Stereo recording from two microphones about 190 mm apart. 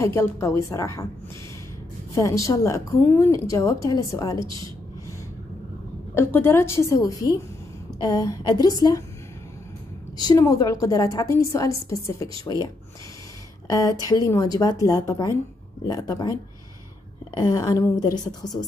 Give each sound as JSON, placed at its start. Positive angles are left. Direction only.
{"t": 0.0, "sound": "a woman's voice", "side_deg": 15}
{"t": 2.1, "sound": "a woman's voice", "side_deg": 15}
{"t": 6.1, "sound": "a woman's voice", "side_deg": 10}
{"t": 10.2, "sound": "a woman's voice", "side_deg": 20}
{"t": 13.7, "sound": "a woman's voice", "side_deg": 15}